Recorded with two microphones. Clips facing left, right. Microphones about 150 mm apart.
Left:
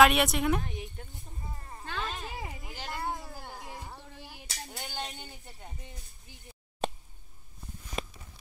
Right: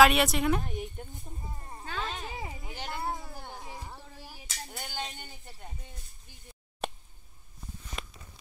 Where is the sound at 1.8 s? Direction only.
5° right (ahead or behind).